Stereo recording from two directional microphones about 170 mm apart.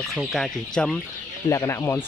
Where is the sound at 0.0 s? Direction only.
Centre (ahead or behind).